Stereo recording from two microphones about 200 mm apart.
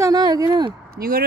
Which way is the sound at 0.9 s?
50° right (ahead or behind).